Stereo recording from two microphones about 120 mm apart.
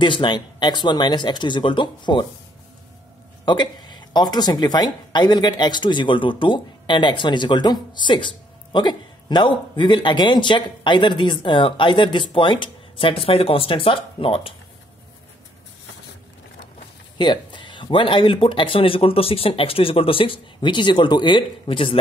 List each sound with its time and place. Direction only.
0.0 s speech: 40° left (ahead or behind)
3.4 s speech: 40° left (ahead or behind)
17.2 s speech: 40° left (ahead or behind)